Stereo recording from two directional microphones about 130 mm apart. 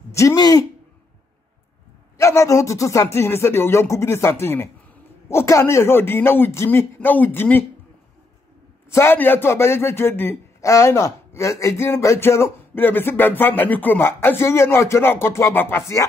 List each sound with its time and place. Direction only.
0.1 s speech: 20° left (ahead or behind)
2.1 s a man's voice: 25° left (ahead or behind)
8.9 s a man's voice: 15° left (ahead or behind)